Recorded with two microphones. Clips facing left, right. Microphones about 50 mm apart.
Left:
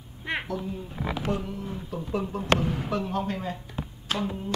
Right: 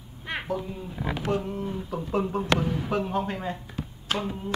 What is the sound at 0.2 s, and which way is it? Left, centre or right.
Cat, centre.